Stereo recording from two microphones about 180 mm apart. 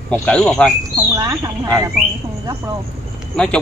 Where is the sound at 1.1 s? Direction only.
20° right (ahead or behind).